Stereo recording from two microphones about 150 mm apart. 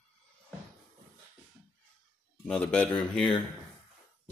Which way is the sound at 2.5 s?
10° left (ahead or behind).